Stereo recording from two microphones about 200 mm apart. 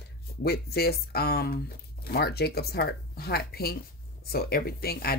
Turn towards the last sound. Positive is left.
turn(degrees=50)  # may be behind; listen again after turning